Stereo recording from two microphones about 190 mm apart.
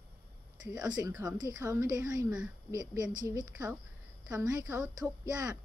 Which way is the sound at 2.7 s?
20° right (ahead or behind).